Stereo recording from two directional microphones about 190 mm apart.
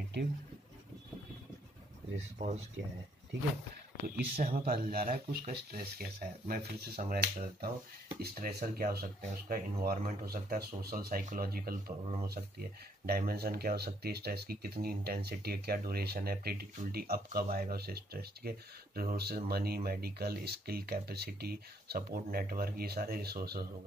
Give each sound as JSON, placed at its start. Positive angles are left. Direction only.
{"t": 2.1, "sound": "speech", "side_deg": -40}
{"t": 4.4, "sound": "speech", "side_deg": -50}